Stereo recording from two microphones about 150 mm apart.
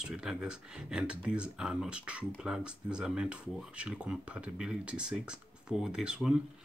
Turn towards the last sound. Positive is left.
turn(degrees=-5)  # may be behind; listen again after turning